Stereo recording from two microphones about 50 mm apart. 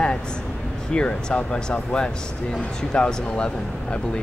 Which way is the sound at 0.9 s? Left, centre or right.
Centre.